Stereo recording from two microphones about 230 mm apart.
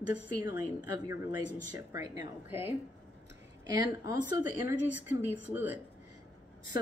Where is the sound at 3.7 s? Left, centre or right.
Centre.